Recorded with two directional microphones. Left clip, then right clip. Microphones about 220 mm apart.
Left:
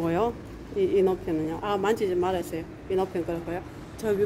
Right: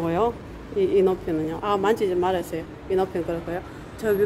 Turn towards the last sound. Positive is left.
turn(degrees=0)  # may be behind; listen again after turning